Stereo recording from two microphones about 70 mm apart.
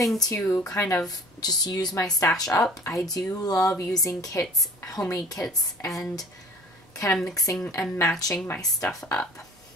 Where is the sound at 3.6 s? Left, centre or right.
Left.